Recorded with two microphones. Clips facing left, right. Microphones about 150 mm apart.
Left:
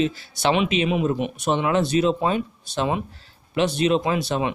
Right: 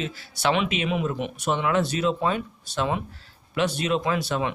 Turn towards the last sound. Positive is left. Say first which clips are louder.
# left 2 dB
turn(degrees=20)  # may be behind; listen again after turning